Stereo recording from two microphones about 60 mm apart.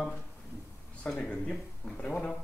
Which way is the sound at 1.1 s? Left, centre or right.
Left.